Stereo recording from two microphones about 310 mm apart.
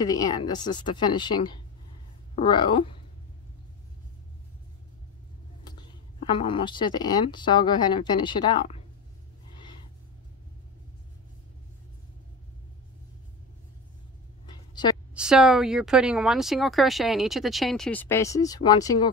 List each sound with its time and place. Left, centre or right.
0.0 s speech: centre
6.2 s speech: centre
14.4 s a sound: centre
15.1 s speech: centre